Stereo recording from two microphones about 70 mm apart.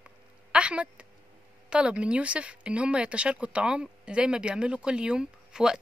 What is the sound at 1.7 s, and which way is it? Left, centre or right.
Speech, centre.